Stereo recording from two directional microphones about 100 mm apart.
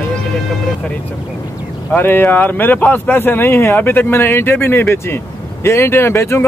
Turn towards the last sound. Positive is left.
turn(degrees=25)  # may be behind; listen again after turning